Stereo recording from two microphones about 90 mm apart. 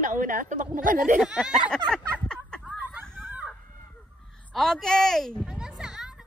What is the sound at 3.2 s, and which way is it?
Chicken, 20° right (ahead or behind).